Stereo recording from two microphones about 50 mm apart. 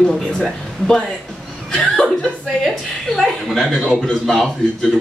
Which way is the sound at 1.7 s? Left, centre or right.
Centre.